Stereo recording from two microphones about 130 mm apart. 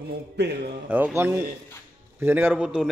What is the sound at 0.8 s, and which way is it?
A man's voice, 15° right (ahead or behind).